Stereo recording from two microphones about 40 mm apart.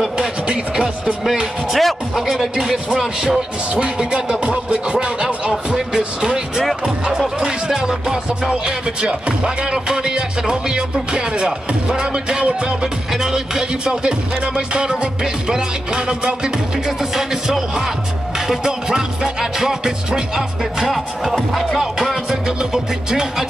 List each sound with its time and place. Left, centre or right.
1.7 s music: centre
2.1 s speech: centre
3.7 s music: right
8.6 s speech: right
13.1 s music: centre
16.8 s music: centre
20.8 s music: centre
22.3 s music: centre